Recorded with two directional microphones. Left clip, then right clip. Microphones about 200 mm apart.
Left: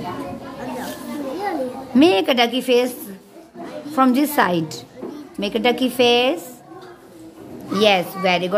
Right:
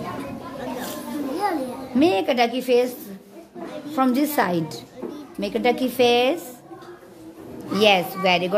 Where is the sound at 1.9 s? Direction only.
10° left (ahead or behind).